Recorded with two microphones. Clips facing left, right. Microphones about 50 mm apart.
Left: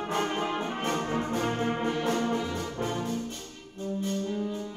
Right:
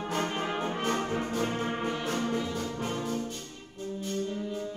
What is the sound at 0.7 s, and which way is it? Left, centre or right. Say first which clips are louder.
Brass instrument: even; left.